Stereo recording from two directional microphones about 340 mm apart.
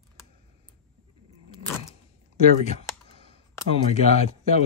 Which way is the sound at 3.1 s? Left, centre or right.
Centre.